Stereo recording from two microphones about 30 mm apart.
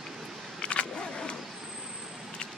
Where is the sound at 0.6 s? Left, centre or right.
Left.